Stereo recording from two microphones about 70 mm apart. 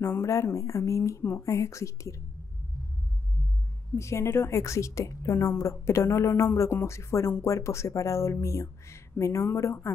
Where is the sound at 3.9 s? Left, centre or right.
Left.